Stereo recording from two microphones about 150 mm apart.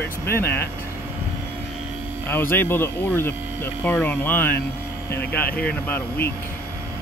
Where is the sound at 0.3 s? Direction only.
15° left (ahead or behind).